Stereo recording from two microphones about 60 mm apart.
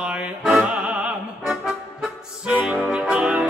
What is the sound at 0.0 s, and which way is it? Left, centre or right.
Music, centre.